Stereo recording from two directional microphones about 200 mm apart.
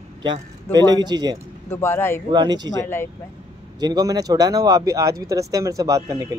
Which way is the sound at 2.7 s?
15° left (ahead or behind).